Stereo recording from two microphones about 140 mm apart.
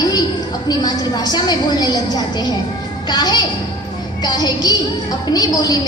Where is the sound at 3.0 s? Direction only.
30° left (ahead or behind).